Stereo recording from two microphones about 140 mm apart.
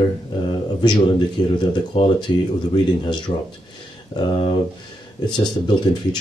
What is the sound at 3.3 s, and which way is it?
Speech, 40° left (ahead or behind).